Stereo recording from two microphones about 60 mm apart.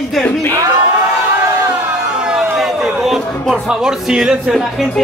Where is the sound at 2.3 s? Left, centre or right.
Centre.